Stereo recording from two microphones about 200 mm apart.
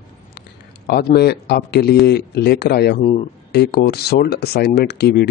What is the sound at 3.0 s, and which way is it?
Speech, 35° left (ahead or behind).